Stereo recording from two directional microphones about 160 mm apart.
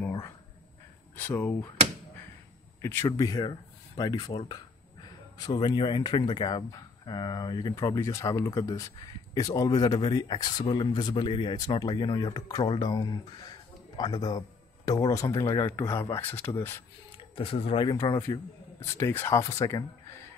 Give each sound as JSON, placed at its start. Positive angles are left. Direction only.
{"t": 1.1, "sound": "speech", "side_deg": 10}
{"t": 2.8, "sound": "speech", "side_deg": 15}
{"t": 5.4, "sound": "speech", "side_deg": 25}
{"t": 17.4, "sound": "speech", "side_deg": 35}
{"t": 17.8, "sound": "speech", "side_deg": 20}